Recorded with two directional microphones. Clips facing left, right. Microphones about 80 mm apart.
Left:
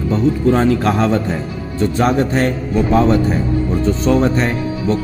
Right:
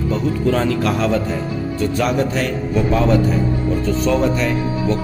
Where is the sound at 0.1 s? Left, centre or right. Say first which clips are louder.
Left 5 dB; left.